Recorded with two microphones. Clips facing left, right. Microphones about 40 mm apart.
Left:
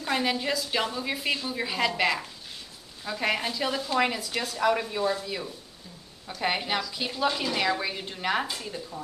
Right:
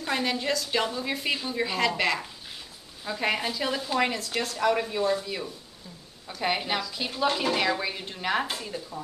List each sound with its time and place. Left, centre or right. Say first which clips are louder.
0.0 s a woman's voice: left 1 dB; centre